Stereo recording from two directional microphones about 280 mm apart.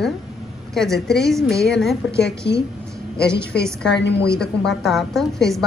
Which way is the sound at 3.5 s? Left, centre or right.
Centre.